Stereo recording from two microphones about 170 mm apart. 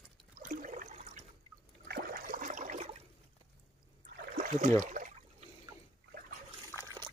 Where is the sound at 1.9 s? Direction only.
60° right (ahead or behind); by 3.0 s 45° right (ahead or behind).